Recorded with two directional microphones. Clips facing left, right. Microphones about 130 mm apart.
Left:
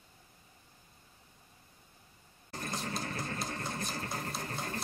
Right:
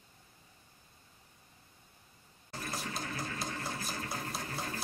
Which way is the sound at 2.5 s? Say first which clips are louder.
Left 2 dB; 40° left (ahead or behind).